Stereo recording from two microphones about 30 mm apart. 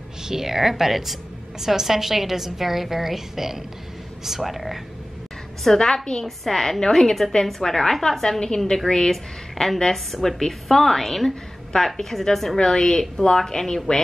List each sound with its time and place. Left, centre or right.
0.2 s a woman's voice: centre
5.7 s a woman's voice: centre
9.1 s a woman's voice: centre